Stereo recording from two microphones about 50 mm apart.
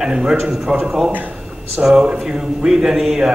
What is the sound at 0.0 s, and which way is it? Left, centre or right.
A man's voice, centre.